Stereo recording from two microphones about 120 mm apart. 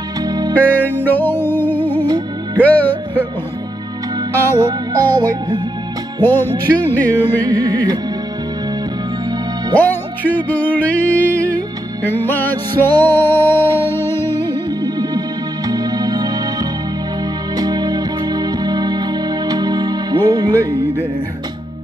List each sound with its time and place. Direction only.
0.2 s music: 35° right (ahead or behind)
0.6 s music: 15° left (ahead or behind)
4.3 s music: 20° left (ahead or behind)
4.6 s music: 35° right (ahead or behind)
6.2 s music: 15° left (ahead or behind)
9.8 s music: 15° left (ahead or behind)
14.7 s music: 35° right (ahead or behind)